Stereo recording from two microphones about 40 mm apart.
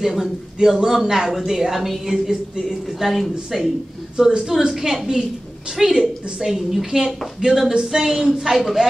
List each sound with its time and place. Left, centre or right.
0.0 s a woman's voice: centre
5.9 s a woman's voice: right
6.4 s a woman's voice: centre